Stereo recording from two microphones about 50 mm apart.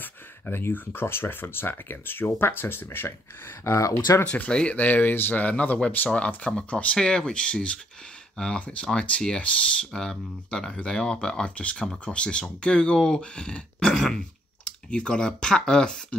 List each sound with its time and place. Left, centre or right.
0.0 s speech: left
4.2 s speech: left
4.7 s speech: left
6.0 s speech: left
9.9 s speech: centre
11.7 s speech: centre
13.8 s speech: centre
14.6 s speech: centre